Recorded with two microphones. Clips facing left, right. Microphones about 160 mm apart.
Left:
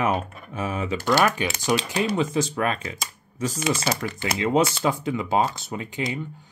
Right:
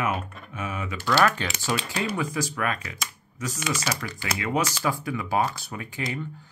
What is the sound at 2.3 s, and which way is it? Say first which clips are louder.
Speech: left 4 dB; 25° left (ahead or behind).